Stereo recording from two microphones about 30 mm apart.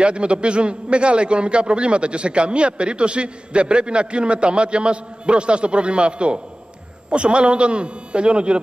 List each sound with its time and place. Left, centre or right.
0.0 s a man's voice: right